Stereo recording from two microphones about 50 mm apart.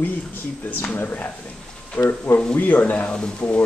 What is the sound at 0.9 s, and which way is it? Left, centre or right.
Speech, left.